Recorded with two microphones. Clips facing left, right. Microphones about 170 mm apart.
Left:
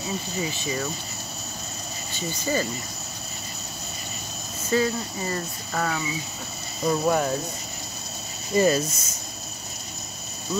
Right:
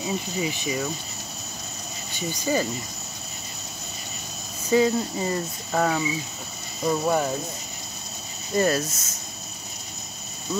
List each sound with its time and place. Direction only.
0.0 s speech: 15° right (ahead or behind)
2.1 s speech: 15° right (ahead or behind)
4.6 s speech: 15° right (ahead or behind)
8.5 s speech: centre (ahead or behind)